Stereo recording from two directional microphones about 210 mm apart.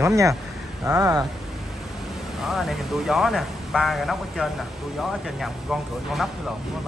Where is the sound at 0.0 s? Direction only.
15° right (ahead or behind).